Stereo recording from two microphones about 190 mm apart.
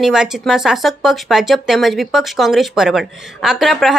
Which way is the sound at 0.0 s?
5° right (ahead or behind).